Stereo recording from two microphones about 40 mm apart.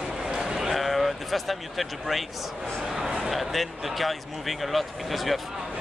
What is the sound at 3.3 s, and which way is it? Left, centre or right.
Speech, centre.